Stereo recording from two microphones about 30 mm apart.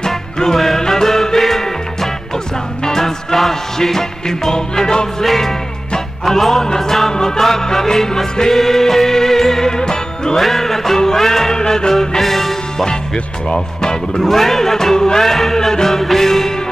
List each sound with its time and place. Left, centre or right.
0.5 s music: centre
3.0 s music: centre
4.3 s speech: centre
5.2 s music: centre
7.3 s music: centre
9.7 s music: left
10.3 s music: centre
11.5 s music: left
12.2 s music: centre
12.8 s speech: left
14.2 s speech: centre
15.7 s music: centre